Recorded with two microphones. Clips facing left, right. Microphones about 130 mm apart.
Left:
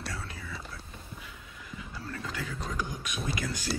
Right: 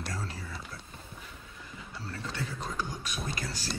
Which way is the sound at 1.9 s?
30° right (ahead or behind).